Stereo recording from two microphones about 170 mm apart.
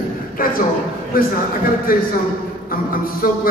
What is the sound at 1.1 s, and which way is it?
A man's voice, 60° left (ahead or behind).